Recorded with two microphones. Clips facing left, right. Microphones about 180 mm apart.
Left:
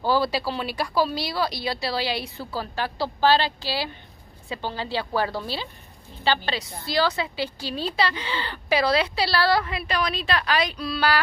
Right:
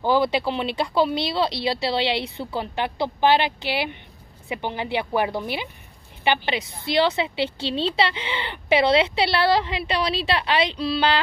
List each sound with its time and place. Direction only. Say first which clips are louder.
0.0 s a woman's voice: right 3 dB; 20° right (ahead or behind)